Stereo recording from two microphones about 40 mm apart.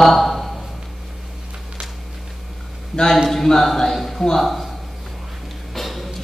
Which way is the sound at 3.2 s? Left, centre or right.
Centre.